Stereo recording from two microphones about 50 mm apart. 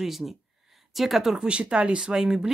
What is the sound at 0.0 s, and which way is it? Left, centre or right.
Speech, centre.